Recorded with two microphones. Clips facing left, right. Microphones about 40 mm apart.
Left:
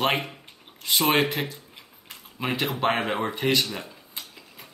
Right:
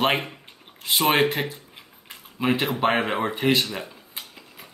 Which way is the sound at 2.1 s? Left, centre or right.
Centre.